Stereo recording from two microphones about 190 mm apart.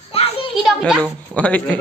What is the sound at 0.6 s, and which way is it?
Speech, centre (ahead or behind).